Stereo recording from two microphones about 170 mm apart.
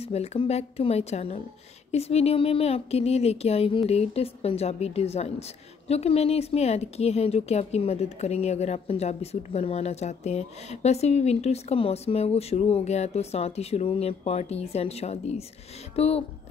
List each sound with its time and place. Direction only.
0.0 s a woman's voice: 40° left (ahead or behind)